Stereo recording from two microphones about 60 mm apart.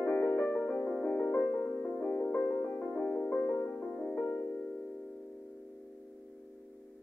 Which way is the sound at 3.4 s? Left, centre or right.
Left.